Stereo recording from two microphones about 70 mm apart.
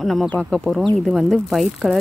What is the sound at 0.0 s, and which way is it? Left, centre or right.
A woman's voice, centre.